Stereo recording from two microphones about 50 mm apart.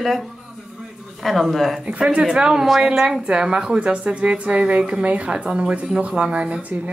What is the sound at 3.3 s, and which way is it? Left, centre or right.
A woman's voice, centre.